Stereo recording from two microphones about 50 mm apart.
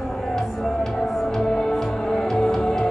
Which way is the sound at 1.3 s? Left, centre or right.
Centre.